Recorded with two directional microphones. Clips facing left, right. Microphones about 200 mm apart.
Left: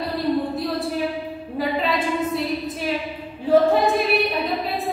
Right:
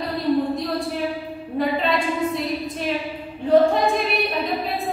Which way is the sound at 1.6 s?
Centre (ahead or behind).